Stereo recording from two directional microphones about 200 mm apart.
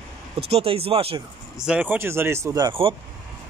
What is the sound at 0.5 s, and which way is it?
Speech, 30° right (ahead or behind).